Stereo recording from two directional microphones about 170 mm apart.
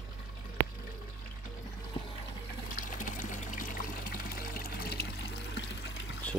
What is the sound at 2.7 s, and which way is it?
Pour, 50° left (ahead or behind).